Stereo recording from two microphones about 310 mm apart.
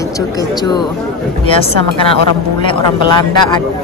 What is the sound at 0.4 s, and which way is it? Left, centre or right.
Speech, centre.